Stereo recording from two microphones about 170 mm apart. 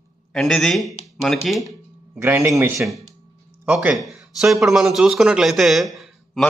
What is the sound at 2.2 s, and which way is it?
A man's voice, 15° right (ahead or behind).